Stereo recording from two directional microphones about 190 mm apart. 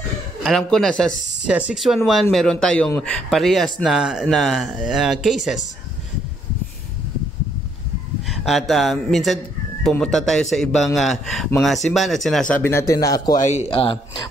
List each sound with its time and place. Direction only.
0.4 s speech: centre (ahead or behind)
1.1 s speech: 35° left (ahead or behind)
1.5 s speech: 5° right (ahead or behind)
8.3 s speech: centre (ahead or behind); by 13.3 s 20° left (ahead or behind)
13.3 s speech: 40° left (ahead or behind)